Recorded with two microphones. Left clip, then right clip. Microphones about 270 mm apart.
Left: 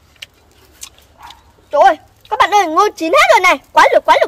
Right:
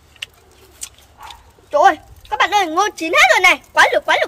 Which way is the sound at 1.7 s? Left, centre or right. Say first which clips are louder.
Left 3 dB; centre.